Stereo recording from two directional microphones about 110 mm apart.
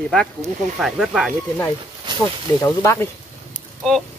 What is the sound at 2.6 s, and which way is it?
Speech, 25° left (ahead or behind).